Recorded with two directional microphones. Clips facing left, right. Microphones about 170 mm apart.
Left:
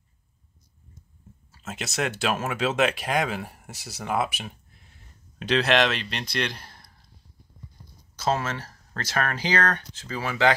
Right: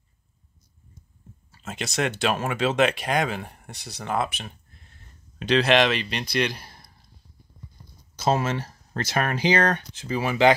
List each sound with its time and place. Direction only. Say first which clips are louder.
1.6 s speech: right 2 dB; 5° left (ahead or behind)
8.2 s speech: right 3 dB; 20° right (ahead or behind)